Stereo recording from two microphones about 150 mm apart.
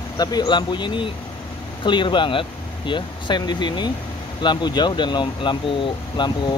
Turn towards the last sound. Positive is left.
turn(degrees=30)  # may be behind; listen again after turning